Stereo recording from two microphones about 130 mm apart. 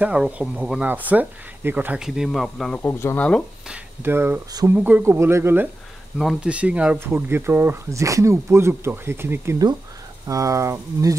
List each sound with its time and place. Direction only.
0.0 s speech: 10° right (ahead or behind)
2.0 s speech: 5° right (ahead or behind)
2.8 s speech: 20° left (ahead or behind)
3.6 s speech: 10° right (ahead or behind)
4.5 s speech: 30° right (ahead or behind)
4.7 s speech: 15° right (ahead or behind)
6.1 s speech: 5° right (ahead or behind); by 11.1 s 25° right (ahead or behind)